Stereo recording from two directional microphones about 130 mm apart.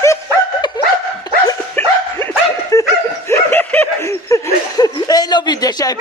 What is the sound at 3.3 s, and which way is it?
Laughter, 15° left (ahead or behind).